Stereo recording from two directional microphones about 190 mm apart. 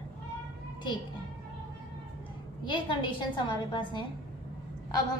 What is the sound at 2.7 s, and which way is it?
A woman's voice, 25° left (ahead or behind).